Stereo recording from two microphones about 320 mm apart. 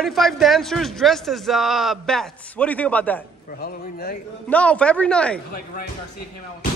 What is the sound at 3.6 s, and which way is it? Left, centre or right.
Speech, left.